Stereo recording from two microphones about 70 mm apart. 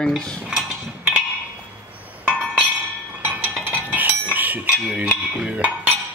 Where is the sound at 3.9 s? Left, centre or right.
Right.